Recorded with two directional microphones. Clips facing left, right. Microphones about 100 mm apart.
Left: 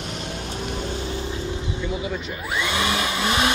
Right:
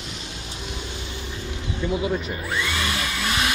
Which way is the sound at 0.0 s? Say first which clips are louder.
Left 6 dB; 50° left (ahead or behind).